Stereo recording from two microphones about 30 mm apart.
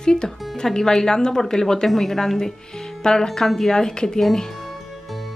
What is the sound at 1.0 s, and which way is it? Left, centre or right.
Speech, left.